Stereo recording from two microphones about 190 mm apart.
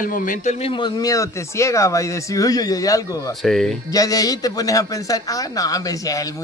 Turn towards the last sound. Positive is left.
turn(degrees=20)  # may be behind; listen again after turning